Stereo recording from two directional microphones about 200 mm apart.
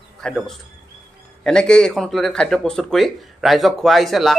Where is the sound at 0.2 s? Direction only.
5° left (ahead or behind).